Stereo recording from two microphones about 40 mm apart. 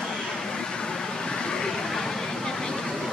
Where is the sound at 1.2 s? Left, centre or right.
Left.